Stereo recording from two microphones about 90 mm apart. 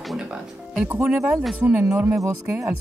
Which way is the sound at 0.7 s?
15° right (ahead or behind).